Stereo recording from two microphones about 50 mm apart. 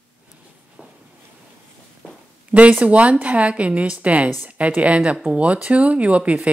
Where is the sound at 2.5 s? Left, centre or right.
Right.